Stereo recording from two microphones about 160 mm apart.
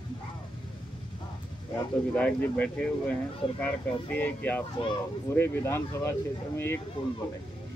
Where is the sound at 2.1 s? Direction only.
10° left (ahead or behind).